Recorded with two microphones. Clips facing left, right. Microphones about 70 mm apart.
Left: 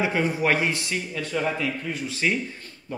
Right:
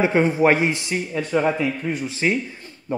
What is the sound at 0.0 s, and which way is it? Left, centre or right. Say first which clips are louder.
A man's voice: right 6 dB; right.